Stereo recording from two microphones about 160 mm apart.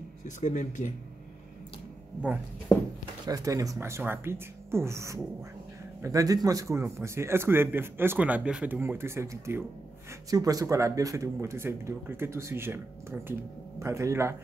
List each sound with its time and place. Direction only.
0.4 s speech: 50° left (ahead or behind)
3.3 s speech: 20° right (ahead or behind)